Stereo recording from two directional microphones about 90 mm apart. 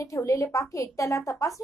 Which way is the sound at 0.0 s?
35° left (ahead or behind).